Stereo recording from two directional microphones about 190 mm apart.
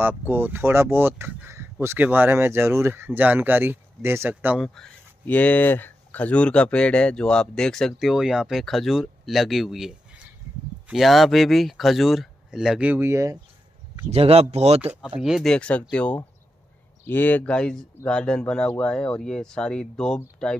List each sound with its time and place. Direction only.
0.0 s speech: 10° right (ahead or behind)
4.6 s speech: 5° left (ahead or behind); by 13.4 s 15° right (ahead or behind)
14.1 s speech: 30° right (ahead or behind)
14.9 s speech: 5° right (ahead or behind)